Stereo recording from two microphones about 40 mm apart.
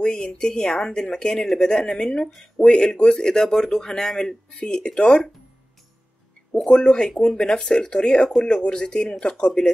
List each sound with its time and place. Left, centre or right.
0.0 s a man's voice: left
4.6 s speech: left
6.5 s speech: left